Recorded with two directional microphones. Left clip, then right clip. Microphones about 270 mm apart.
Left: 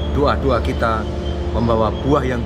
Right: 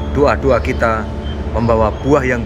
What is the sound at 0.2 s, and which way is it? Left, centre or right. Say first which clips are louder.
Speech: right 5 dB; centre.